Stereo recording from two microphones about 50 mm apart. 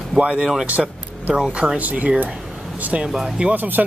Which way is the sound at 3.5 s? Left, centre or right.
Right.